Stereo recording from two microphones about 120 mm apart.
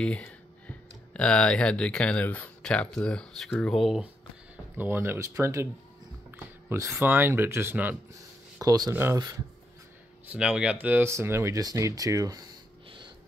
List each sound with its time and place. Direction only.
0.0 s speech: 10° left (ahead or behind)
3.7 s speech: 5° right (ahead or behind)
4.7 s speech: 20° right (ahead or behind)
8.5 s speech: 30° right (ahead or behind)
8.9 s speech: 20° right (ahead or behind)
10.3 s speech: 10° right (ahead or behind); by 12.4 s 30° right (ahead or behind)